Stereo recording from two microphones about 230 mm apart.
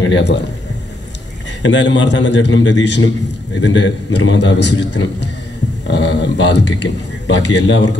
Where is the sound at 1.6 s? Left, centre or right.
Left.